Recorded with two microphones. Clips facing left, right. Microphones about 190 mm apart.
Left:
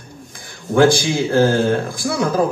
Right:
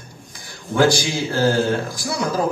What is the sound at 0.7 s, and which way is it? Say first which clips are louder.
A man's voice: left 4 dB; 55° left (ahead or behind).